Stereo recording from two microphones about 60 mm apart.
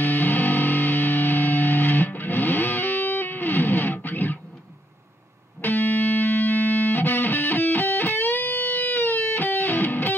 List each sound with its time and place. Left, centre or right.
0.0 s music: left
5.6 s music: left